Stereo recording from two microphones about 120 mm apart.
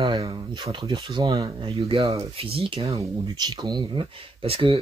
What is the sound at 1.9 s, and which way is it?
Speech, 55° right (ahead or behind).